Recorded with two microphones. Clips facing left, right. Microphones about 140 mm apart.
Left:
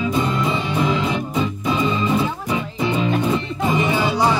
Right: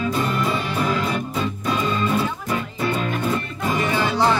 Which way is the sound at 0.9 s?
15° left (ahead or behind).